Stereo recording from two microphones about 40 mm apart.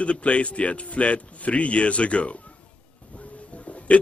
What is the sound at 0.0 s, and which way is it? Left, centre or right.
Speech, left.